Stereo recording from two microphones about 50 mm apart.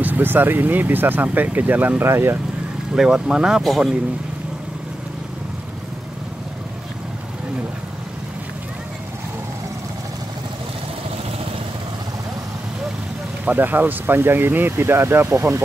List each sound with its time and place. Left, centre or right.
0.0 s speech: right
2.0 s speech: right
3.0 s speech: centre
13.5 s speech: right